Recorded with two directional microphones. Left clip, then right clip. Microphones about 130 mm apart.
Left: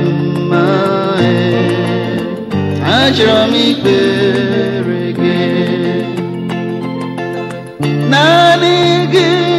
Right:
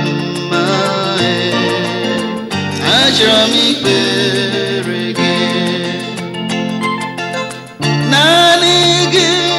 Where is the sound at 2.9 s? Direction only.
5° left (ahead or behind); by 4.4 s 25° left (ahead or behind).